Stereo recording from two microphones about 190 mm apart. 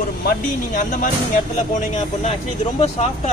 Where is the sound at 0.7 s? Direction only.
45° left (ahead or behind).